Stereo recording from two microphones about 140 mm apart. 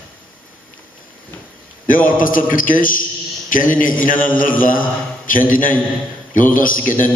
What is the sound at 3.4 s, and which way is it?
Speech, 75° left (ahead or behind).